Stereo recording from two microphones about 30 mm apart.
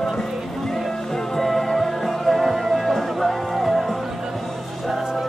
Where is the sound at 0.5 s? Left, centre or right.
Centre.